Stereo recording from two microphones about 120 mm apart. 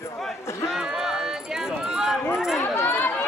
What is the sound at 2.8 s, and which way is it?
Run, 20° left (ahead or behind).